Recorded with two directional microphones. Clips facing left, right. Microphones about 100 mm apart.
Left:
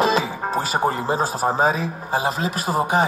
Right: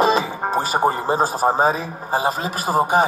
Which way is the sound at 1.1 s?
40° right (ahead or behind).